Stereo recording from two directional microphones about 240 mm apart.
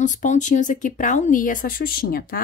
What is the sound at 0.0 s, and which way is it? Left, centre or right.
Speech, left.